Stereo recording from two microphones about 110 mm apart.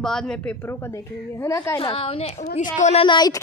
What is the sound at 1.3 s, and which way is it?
Speech, 25° left (ahead or behind).